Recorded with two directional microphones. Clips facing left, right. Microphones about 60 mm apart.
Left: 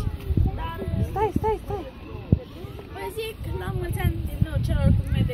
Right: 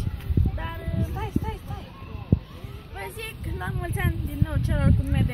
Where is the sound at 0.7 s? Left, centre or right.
Left.